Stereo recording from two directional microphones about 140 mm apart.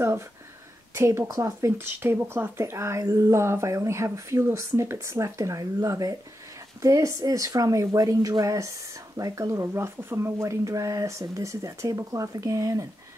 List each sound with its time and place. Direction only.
0.9 s speech: 20° right (ahead or behind)